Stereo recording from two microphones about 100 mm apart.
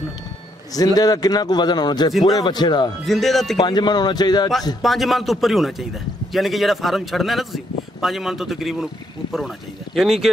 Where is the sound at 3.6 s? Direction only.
45° left (ahead or behind).